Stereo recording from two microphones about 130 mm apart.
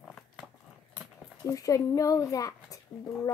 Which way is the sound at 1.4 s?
25° left (ahead or behind).